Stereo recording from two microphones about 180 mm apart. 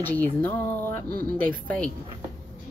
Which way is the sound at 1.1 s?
55° right (ahead or behind).